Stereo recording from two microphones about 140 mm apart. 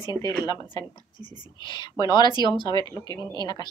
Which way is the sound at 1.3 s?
35° left (ahead or behind).